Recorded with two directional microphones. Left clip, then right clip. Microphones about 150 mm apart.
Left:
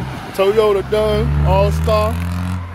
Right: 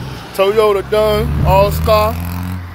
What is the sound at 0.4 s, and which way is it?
Speech, 15° left (ahead or behind).